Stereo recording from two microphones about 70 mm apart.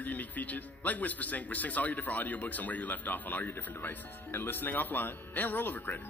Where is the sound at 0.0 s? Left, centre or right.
Left.